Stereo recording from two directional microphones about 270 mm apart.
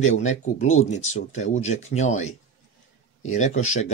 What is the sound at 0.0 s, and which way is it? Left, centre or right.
Speech, left.